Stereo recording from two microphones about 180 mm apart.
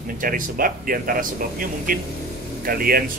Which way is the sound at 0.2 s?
50° right (ahead or behind).